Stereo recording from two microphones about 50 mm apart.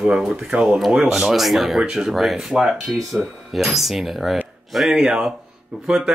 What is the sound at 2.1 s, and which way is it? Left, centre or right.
Speech, centre.